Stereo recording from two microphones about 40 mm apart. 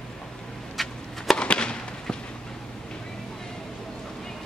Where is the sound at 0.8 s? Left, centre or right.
Centre.